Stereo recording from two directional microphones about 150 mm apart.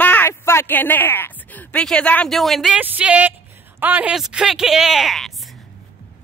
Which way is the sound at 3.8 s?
10° right (ahead or behind).